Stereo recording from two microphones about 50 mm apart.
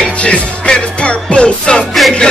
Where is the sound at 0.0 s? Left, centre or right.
Left.